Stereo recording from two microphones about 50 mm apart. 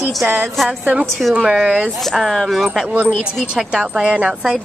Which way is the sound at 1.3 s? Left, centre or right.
Centre.